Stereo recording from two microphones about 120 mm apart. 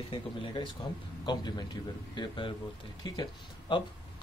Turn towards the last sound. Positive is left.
turn(degrees=40)  # may be behind; listen again after turning